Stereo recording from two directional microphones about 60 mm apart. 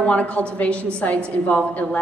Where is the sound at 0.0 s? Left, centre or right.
Left.